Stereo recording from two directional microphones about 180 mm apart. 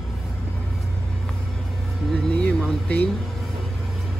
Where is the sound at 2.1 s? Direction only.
5° left (ahead or behind).